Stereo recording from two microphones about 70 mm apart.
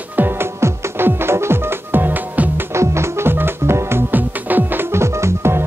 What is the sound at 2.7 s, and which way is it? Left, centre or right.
Music, right.